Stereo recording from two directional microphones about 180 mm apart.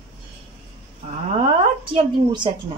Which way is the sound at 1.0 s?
40° right (ahead or behind).